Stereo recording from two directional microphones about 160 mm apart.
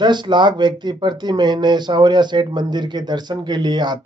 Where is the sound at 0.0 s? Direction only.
30° right (ahead or behind).